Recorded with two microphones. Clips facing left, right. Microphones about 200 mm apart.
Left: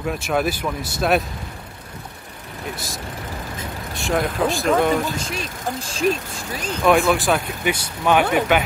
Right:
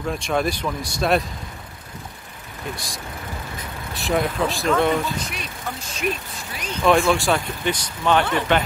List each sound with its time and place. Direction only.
0.0 s speech: 5° left (ahead or behind)
2.7 s speech: centre (ahead or behind)
5.3 s speech: 30° left (ahead or behind)
6.8 s speech: centre (ahead or behind)